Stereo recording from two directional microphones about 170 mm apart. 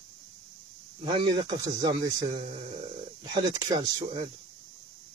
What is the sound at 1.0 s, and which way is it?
Speech, 30° right (ahead or behind).